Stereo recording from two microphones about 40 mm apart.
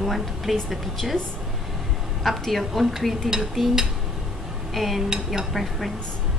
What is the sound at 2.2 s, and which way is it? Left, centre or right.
A woman's voice, centre.